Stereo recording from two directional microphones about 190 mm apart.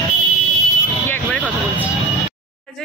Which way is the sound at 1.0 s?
10° left (ahead or behind).